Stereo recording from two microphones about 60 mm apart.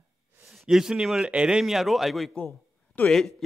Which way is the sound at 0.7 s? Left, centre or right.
Centre.